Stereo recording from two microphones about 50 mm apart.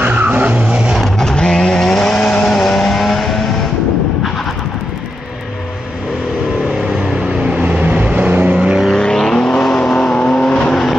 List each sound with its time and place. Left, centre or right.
0.0 s vehicle: right
1.1 s vehicle: centre
7.0 s vehicle: right
8.9 s vehicle: centre
10.7 s vehicle: centre